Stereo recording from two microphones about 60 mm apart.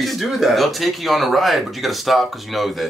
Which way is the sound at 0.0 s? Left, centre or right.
Centre.